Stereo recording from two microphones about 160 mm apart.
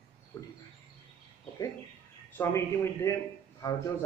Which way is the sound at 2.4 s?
15° left (ahead or behind).